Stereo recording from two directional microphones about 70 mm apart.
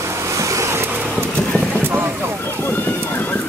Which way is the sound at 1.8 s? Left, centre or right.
Right.